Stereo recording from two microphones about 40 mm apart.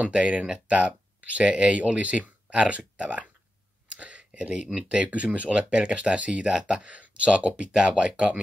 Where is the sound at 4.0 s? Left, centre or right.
Right.